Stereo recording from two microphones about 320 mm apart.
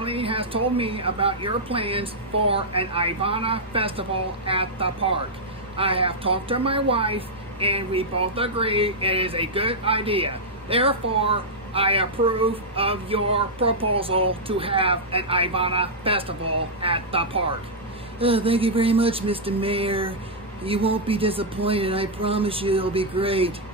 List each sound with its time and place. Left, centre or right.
0.0 s a woman's voice: centre